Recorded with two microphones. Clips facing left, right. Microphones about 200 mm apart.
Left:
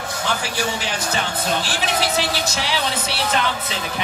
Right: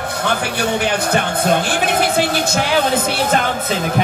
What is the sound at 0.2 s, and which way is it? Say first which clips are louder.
A man's voice: right 4 dB; 60° right (ahead or behind).